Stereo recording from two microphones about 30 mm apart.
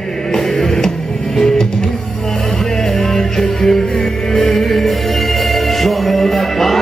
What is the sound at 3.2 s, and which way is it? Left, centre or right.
Music, centre.